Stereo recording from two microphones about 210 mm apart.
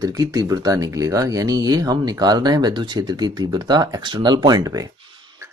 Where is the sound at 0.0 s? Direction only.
15° right (ahead or behind).